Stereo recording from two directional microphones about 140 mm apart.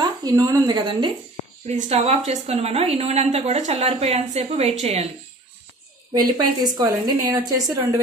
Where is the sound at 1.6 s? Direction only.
50° right (ahead or behind).